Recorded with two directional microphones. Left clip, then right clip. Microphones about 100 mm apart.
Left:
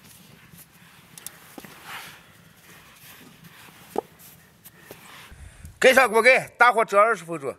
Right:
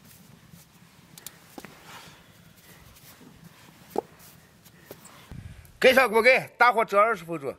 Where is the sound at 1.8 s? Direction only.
35° left (ahead or behind).